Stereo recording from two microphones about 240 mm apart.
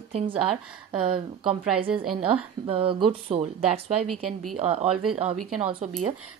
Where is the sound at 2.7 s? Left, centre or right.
Right.